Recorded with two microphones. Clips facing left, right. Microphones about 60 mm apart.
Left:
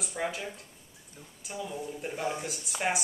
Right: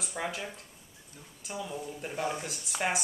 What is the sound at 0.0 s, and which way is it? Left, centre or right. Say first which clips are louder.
Speech: left 2 dB; centre.